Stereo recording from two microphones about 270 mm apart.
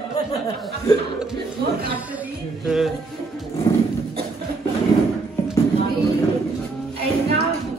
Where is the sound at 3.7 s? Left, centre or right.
Centre.